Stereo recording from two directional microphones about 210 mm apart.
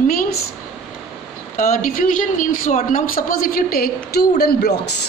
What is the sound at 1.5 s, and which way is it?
Speech, 40° left (ahead or behind).